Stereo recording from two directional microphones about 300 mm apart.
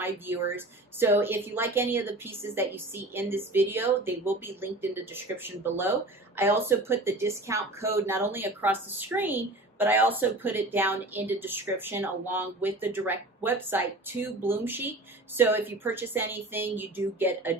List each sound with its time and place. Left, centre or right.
0.0 s speech: centre